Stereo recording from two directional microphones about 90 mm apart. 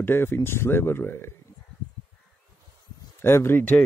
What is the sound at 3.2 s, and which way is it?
Speech, 25° left (ahead or behind).